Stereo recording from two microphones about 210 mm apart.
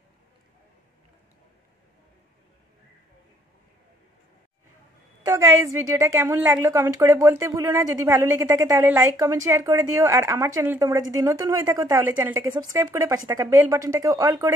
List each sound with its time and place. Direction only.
5.2 s a woman's voice: 15° right (ahead or behind)